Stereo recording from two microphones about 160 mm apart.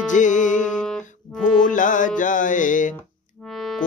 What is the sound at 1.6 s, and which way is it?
Mantra, 55° left (ahead or behind).